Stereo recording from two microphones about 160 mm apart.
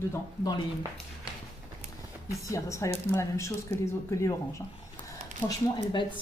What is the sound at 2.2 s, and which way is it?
A woman's voice, 20° left (ahead or behind).